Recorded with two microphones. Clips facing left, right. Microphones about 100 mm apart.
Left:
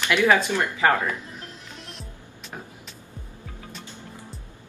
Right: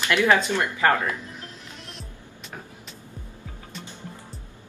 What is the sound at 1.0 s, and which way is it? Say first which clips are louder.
Music: even; centre (ahead or behind).